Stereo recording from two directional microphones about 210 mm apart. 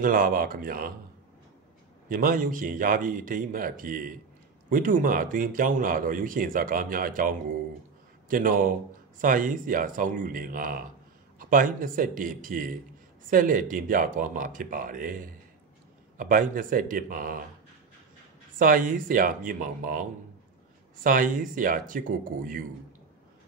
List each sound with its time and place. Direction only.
0.0 s speech: 40° right (ahead or behind)
2.0 s speech: 40° right (ahead or behind)
18.6 s speech: 40° right (ahead or behind)